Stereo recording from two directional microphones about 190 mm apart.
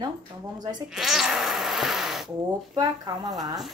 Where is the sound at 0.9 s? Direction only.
Centre (ahead or behind).